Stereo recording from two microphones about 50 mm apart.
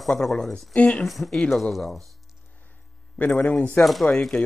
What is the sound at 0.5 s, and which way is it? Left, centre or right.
Speech, left.